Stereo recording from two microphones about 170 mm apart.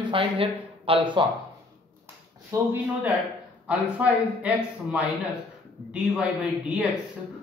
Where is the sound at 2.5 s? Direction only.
15° right (ahead or behind).